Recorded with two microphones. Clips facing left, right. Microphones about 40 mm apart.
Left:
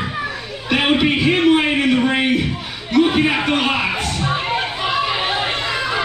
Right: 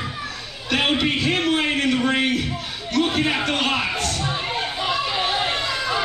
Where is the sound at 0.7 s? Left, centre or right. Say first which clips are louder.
Left 4 dB; centre.